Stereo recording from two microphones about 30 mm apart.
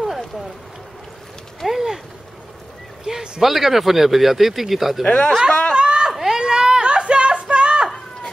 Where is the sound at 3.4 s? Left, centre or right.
Centre.